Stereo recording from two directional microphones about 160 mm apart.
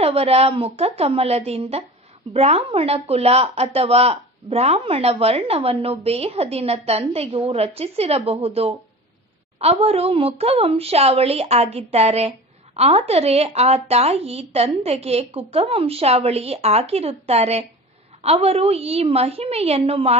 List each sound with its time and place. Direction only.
0.0 s speech: 40° right (ahead or behind)